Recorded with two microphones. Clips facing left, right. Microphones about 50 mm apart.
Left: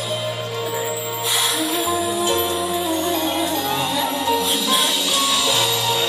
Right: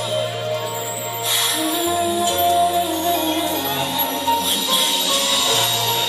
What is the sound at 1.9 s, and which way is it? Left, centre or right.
Music, left.